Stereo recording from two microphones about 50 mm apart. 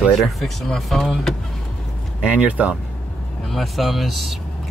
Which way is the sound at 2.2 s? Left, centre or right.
Right.